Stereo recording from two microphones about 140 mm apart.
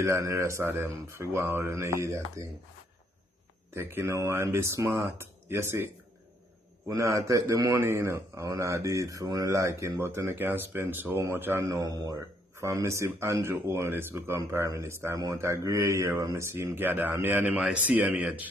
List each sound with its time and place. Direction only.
0.0 s speech: 20° right (ahead or behind)
3.7 s speech: 20° right (ahead or behind)
6.9 s speech: 20° right (ahead or behind)